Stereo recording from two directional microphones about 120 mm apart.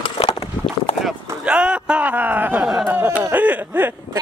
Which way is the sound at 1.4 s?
10° right (ahead or behind).